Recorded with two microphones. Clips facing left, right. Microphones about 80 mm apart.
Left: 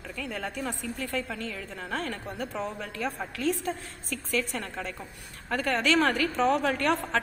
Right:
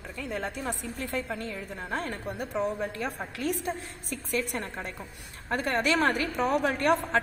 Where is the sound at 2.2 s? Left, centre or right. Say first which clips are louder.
Right 3 dB; centre.